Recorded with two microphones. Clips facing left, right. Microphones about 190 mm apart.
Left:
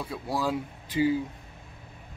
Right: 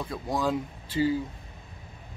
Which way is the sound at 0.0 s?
5° left (ahead or behind).